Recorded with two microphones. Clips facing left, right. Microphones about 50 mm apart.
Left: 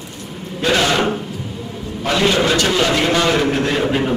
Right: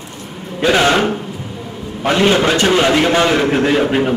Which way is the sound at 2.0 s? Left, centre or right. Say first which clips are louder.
Right 3 dB; right.